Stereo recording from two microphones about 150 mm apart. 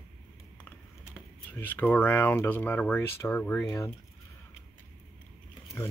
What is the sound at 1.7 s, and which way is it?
Speech, 10° left (ahead or behind).